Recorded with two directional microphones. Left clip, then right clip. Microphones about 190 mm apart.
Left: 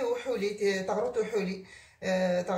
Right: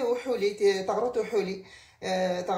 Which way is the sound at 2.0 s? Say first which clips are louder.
Even; 40° right (ahead or behind).